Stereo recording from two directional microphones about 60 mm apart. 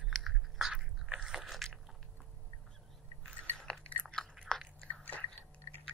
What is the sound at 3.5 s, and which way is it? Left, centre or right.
Biting, centre.